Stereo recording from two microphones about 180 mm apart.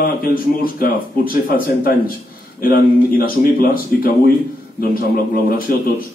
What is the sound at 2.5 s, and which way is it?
Speech, 55° left (ahead or behind).